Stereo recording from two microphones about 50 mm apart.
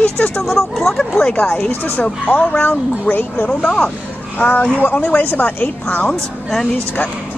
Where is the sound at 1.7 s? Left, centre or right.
Left.